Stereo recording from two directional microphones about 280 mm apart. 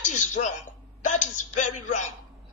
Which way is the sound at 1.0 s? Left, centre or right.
Left.